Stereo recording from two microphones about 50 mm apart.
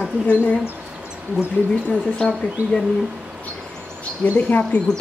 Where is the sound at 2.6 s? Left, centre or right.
Right.